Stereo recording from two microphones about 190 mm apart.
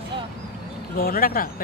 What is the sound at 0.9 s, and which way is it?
Speech, 50° left (ahead or behind).